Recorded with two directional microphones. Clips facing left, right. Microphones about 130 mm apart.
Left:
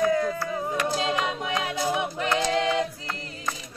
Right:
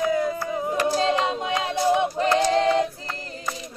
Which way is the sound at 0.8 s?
35° right (ahead or behind).